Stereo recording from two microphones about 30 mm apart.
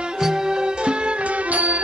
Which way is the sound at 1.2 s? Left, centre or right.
Right.